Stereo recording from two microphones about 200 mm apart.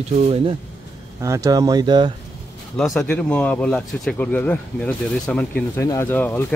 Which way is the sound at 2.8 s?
5° left (ahead or behind).